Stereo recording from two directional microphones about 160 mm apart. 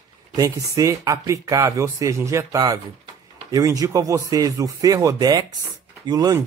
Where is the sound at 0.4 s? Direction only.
20° right (ahead or behind).